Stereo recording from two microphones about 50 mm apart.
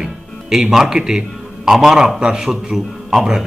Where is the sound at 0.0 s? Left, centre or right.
Centre.